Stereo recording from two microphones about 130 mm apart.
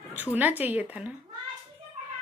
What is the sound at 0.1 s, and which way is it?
Speech, 15° right (ahead or behind).